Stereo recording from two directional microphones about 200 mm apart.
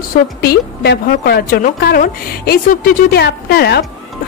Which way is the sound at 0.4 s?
50° left (ahead or behind).